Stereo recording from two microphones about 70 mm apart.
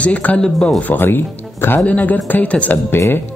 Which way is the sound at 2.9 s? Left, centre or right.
Left.